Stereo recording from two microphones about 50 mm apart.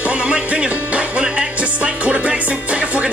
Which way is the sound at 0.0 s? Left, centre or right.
Right.